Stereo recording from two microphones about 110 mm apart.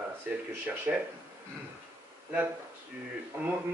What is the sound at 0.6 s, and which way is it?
Speech, 15° right (ahead or behind).